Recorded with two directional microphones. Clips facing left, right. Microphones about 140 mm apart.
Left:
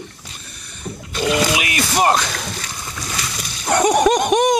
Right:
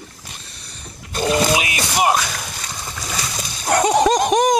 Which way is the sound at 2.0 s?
10° right (ahead or behind).